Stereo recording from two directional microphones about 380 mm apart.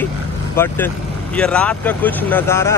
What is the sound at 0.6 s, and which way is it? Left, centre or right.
Speech, centre.